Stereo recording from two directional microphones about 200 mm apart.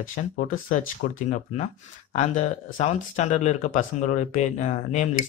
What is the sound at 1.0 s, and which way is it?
Speech, 40° left (ahead or behind).